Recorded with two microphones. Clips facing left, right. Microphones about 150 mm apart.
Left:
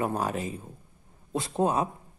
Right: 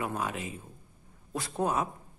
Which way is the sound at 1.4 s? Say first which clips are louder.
Left 4 dB; 25° left (ahead or behind).